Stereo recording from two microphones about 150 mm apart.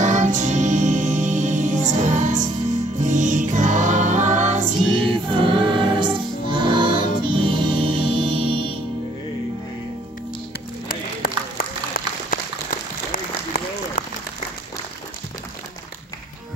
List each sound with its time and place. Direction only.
0.0 s music: 55° right (ahead or behind)
5.3 s music: 35° right (ahead or behind)
10.9 s a sound: 75° left (ahead or behind)
13.1 s applause: 55° left (ahead or behind)